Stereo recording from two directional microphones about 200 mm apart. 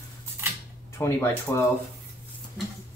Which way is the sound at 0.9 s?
15° left (ahead or behind).